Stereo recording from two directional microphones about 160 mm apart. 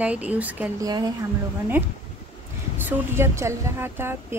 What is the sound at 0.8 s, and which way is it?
Speech, 25° right (ahead or behind).